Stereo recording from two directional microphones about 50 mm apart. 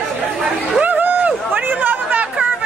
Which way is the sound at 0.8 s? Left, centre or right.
Right.